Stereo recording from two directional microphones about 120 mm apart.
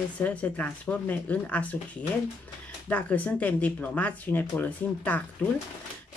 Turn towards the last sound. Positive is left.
turn(degrees=15)  # may be behind; listen again after turning